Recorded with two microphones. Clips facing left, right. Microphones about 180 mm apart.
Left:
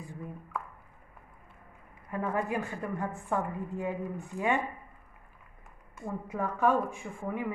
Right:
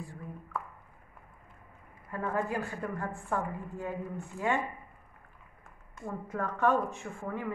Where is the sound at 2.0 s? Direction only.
20° left (ahead or behind).